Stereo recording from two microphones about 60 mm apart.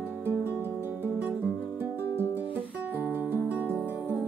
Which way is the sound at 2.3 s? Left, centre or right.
Right.